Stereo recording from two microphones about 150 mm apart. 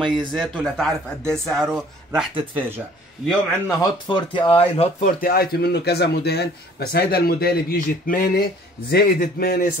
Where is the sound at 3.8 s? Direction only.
30° left (ahead or behind).